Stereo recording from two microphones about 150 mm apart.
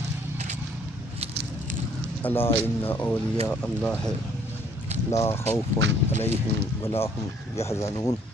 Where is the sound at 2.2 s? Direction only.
15° left (ahead or behind).